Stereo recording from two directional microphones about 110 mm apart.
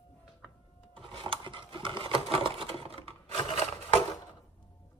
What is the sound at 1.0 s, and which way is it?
Sewing machine, 50° right (ahead or behind).